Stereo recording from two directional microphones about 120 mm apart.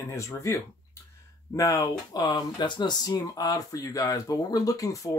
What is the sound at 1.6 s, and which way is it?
Speech, 30° left (ahead or behind).